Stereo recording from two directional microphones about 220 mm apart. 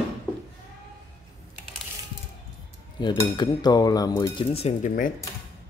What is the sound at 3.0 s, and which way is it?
Cutlery, 20° left (ahead or behind).